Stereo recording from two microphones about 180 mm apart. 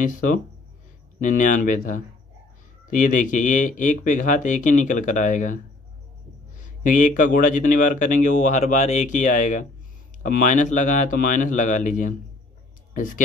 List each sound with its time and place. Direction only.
0.0 s speech: 45° left (ahead or behind)
6.6 s speech: 45° left (ahead or behind)